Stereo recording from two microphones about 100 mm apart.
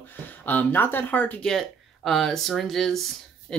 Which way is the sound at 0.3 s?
20° left (ahead or behind).